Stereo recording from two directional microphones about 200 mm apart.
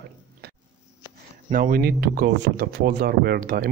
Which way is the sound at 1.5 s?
45° right (ahead or behind).